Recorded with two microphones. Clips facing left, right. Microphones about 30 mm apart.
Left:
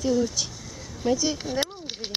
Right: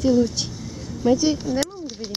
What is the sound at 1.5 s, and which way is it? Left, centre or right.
Speech, left.